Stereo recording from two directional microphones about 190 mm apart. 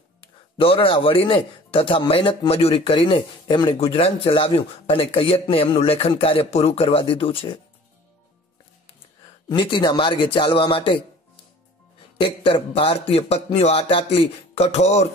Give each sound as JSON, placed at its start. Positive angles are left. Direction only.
{"t": 0.2, "sound": "speech", "side_deg": 30}
{"t": 9.5, "sound": "speech", "side_deg": 25}
{"t": 12.2, "sound": "speech", "side_deg": 30}